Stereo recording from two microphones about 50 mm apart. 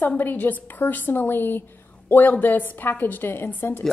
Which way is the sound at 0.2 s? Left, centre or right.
Left.